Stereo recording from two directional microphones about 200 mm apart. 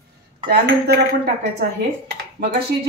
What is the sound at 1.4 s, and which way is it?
Speech, 55° right (ahead or behind).